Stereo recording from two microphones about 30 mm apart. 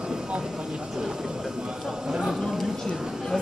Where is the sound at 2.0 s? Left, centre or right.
Right.